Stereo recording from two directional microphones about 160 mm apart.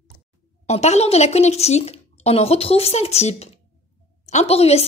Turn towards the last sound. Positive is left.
turn(degrees=40)  # may be behind; listen again after turning